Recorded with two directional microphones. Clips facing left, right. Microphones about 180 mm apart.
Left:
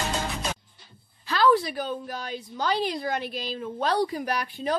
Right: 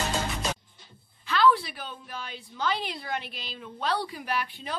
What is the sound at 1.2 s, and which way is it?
A woman's voice, 40° left (ahead or behind).